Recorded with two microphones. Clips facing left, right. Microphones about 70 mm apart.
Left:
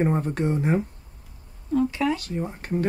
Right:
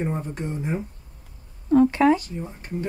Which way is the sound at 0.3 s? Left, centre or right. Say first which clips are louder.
Left 6 dB; left.